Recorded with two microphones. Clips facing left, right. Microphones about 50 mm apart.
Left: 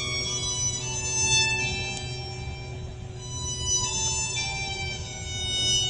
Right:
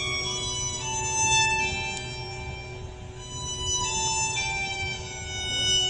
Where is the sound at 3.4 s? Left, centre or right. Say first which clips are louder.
Right 3 dB; centre.